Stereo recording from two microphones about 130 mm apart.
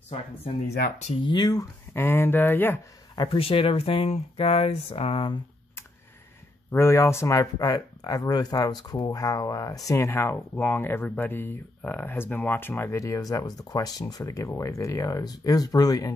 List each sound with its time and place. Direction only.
1.2 s speech: 35° left (ahead or behind); by 2.8 s 15° left (ahead or behind)
3.2 s speech: 45° left (ahead or behind)
6.7 s speech: 20° left (ahead or behind)